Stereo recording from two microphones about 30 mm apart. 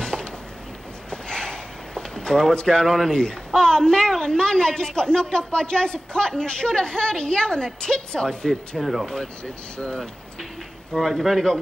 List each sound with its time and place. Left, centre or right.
0.0 s a sound: left
2.5 s speech: left
2.9 s speech: centre
3.2 s speech: left
8.7 s speech: centre
10.9 s speech: centre